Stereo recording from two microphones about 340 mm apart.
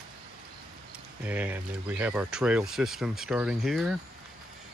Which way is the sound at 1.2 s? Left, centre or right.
Centre.